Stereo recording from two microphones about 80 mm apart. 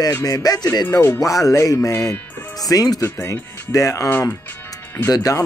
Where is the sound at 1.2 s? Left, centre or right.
Left.